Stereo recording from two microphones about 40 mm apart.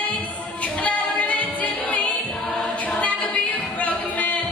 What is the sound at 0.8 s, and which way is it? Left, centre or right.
Music, left.